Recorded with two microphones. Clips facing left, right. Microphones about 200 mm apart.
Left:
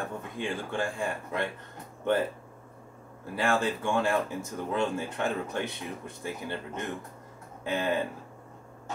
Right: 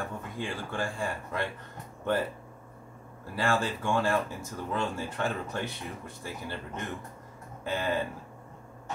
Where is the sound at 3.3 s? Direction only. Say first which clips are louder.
Left 1 dB; 20° left (ahead or behind).